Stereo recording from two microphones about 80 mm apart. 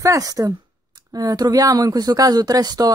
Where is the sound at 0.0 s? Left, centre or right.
Right.